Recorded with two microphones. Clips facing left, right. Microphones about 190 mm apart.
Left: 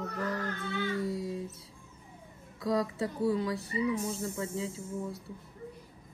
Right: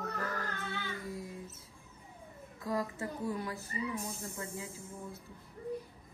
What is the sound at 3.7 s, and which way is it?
Speech, 90° left.